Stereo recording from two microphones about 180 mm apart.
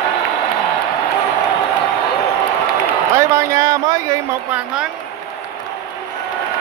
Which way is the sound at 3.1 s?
15° right (ahead or behind).